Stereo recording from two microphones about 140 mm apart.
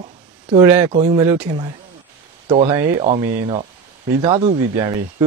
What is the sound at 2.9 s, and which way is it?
Speech, 50° right (ahead or behind).